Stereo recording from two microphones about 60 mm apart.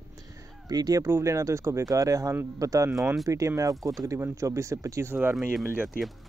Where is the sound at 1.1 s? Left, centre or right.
Right.